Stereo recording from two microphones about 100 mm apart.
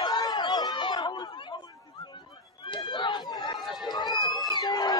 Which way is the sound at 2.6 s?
50° left (ahead or behind).